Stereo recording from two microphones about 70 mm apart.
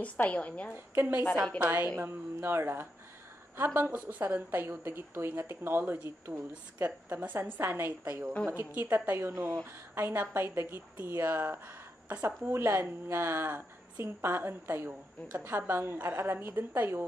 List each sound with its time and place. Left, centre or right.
0.0 s a woman's voice: centre
0.7 s a woman's voice: right
7.1 s a woman's voice: right